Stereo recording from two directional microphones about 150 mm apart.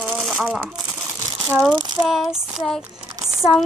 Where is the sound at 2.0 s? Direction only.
Centre (ahead or behind).